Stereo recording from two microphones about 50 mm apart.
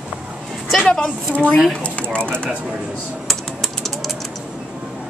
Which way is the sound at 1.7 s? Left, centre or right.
Left.